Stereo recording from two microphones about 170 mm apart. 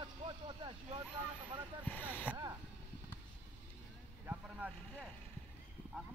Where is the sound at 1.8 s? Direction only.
10° left (ahead or behind).